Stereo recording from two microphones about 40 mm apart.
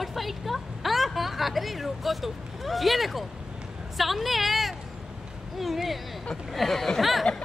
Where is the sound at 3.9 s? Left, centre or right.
Centre.